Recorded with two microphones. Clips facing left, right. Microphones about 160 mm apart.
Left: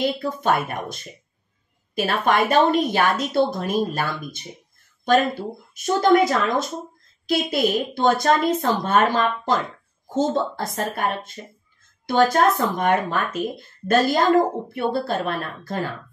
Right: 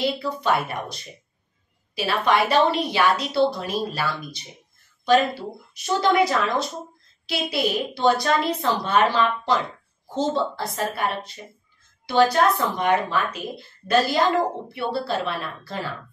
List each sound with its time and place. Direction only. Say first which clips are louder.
0.0 s speech: left 2 dB; 50° left (ahead or behind)
2.0 s speech: left 1 dB; 50° left (ahead or behind)
5.8 s speech: left 3 dB; 45° left (ahead or behind)
12.1 s speech: left 1 dB; 50° left (ahead or behind)